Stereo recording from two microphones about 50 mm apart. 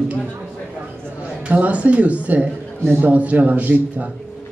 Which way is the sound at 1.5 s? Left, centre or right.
Right.